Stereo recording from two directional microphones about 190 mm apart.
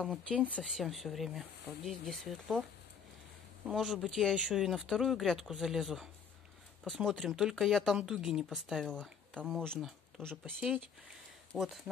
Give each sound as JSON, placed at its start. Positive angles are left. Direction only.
{"t": 0.0, "sound": "speech", "side_deg": 5}
{"t": 3.6, "sound": "speech", "side_deg": 0}